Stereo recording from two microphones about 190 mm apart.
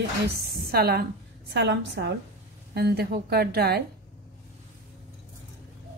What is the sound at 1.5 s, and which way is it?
A woman's voice, 65° right (ahead or behind).